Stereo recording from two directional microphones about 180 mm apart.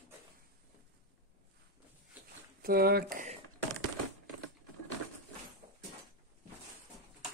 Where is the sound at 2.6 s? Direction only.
60° right (ahead or behind).